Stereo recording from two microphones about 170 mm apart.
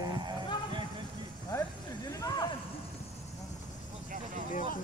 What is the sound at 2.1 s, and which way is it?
Speech, 20° left (ahead or behind).